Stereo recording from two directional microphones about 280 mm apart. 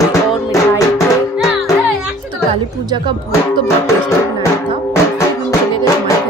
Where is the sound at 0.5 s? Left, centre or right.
Centre.